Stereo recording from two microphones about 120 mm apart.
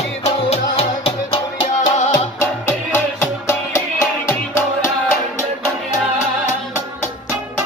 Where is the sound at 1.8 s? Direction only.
80° left.